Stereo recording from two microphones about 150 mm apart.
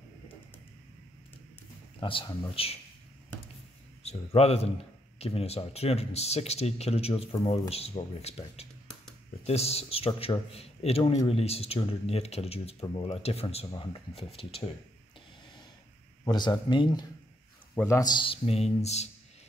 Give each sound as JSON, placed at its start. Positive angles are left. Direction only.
{"t": 2.0, "sound": "speech", "side_deg": 35}
{"t": 4.0, "sound": "a man's voice", "side_deg": 45}
{"t": 16.3, "sound": "speech", "side_deg": 30}